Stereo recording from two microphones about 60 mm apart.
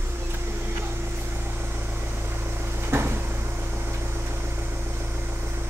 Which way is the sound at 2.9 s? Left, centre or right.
Right.